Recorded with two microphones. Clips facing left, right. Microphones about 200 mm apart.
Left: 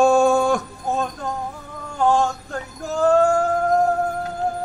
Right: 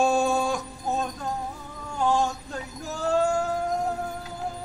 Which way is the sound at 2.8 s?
50° left (ahead or behind).